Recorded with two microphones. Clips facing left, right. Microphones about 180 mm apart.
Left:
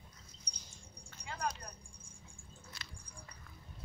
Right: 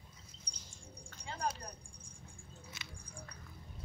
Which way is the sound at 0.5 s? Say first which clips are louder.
Even; 50° right (ahead or behind).